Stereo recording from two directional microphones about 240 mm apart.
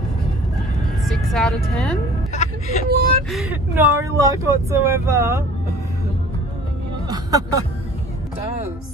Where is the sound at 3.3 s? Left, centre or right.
Centre.